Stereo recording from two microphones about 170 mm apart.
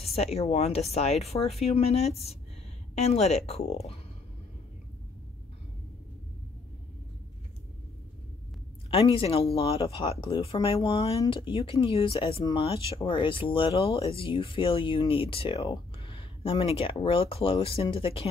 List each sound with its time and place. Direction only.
0.0 s speech: 35° left (ahead or behind)
8.9 s speech: 30° left (ahead or behind)